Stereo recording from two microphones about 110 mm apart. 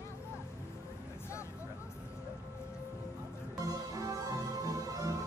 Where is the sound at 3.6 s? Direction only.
30° right (ahead or behind).